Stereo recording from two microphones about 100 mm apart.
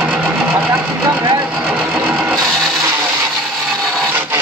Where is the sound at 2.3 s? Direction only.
5° left (ahead or behind).